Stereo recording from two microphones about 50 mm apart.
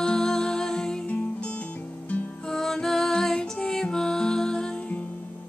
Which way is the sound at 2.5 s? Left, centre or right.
Centre.